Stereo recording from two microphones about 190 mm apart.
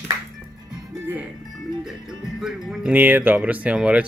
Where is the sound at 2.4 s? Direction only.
Centre (ahead or behind).